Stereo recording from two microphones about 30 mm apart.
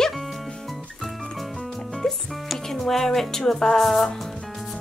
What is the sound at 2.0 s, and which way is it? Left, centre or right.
Music, left.